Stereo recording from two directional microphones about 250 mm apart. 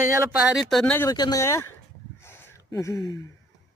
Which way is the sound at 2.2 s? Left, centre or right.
Centre.